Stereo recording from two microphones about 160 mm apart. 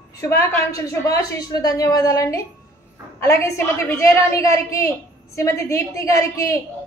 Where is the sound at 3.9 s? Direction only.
20° left (ahead or behind).